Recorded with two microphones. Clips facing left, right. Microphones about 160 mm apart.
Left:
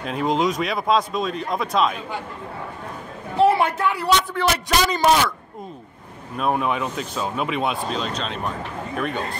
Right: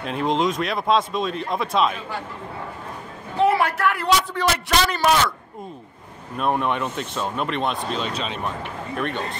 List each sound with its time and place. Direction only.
0.0 s speech: centre (ahead or behind)
3.3 s a man's voice: 25° left (ahead or behind)
6.3 s speech: centre (ahead or behind)